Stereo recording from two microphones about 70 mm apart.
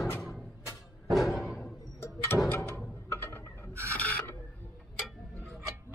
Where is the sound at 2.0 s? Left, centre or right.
Left.